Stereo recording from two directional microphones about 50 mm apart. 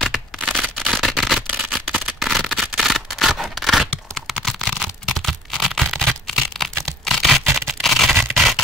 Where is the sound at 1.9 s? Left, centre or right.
Right.